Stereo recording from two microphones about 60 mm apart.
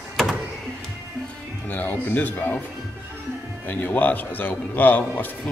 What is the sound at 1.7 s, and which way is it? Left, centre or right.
Speech, left.